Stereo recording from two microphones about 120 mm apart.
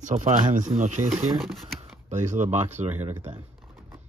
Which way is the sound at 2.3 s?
85° right.